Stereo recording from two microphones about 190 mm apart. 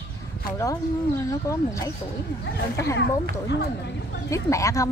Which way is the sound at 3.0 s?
65° left (ahead or behind).